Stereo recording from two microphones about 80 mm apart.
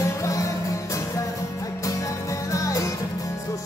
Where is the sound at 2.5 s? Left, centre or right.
Left.